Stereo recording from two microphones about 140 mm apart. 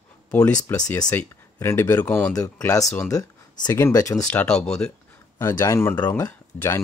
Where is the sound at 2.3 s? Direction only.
25° left (ahead or behind).